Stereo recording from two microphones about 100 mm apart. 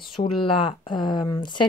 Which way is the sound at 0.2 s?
60° left (ahead or behind).